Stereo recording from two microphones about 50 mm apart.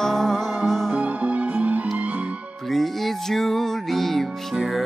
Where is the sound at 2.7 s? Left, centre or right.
Centre.